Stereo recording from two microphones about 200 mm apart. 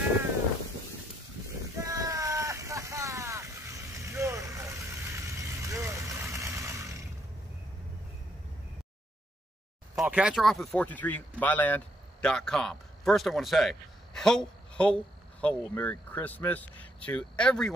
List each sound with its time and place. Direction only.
1.9 s a sound: 15° right (ahead or behind)
4.0 s vehicle: 15° right (ahead or behind)
9.9 s speech: 5° right (ahead or behind)